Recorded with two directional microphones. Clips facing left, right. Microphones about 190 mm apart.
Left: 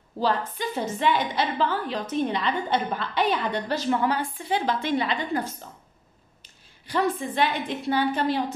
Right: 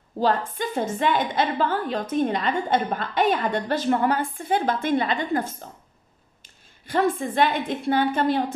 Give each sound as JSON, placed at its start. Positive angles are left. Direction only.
{"t": 0.6, "sound": "a woman's voice", "side_deg": -50}
{"t": 6.9, "sound": "a woman's voice", "side_deg": -50}